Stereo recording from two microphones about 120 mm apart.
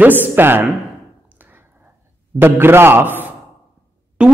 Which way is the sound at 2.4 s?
20° right (ahead or behind).